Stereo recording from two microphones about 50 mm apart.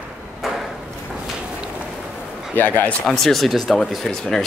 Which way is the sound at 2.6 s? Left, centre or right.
Left.